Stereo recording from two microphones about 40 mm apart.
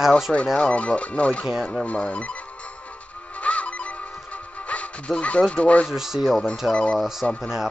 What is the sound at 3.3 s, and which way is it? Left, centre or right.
Music, left.